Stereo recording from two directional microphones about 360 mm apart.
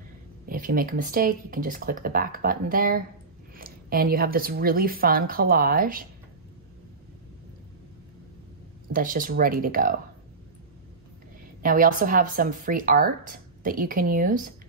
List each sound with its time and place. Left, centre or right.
0.5 s speech: right
8.9 s speech: right
11.6 s speech: right